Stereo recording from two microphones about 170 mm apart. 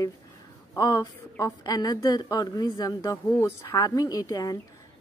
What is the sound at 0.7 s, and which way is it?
A woman's voice, 20° left (ahead or behind).